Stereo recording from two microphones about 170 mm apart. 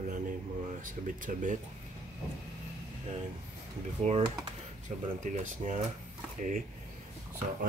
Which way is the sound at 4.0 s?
40° right (ahead or behind).